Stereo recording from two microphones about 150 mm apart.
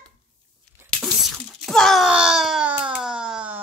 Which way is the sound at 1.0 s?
Centre (ahead or behind).